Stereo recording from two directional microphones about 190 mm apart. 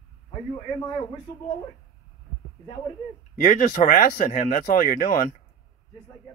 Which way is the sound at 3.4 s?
45° left (ahead or behind).